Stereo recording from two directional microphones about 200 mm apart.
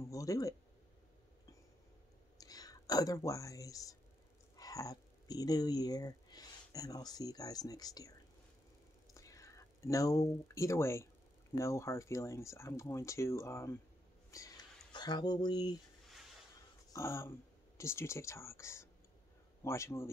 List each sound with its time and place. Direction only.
0.1 s speech: 15° left (ahead or behind)
2.4 s speech: 20° left (ahead or behind)
16.9 s speech: 15° left (ahead or behind)